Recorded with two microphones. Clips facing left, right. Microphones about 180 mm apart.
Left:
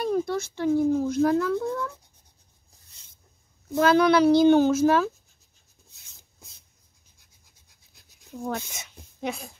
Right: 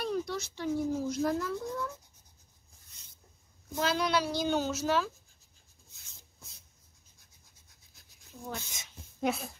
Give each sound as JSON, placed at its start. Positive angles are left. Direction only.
{"t": 0.0, "sound": "speech", "side_deg": 50}
{"t": 3.8, "sound": "speech", "side_deg": 60}
{"t": 8.5, "sound": "speech", "side_deg": 60}
{"t": 9.2, "sound": "speech", "side_deg": 0}